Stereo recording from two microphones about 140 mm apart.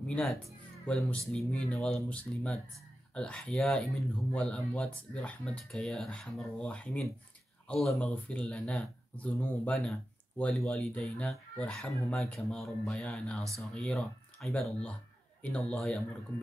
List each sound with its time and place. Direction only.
0.1 s speech: centre (ahead or behind)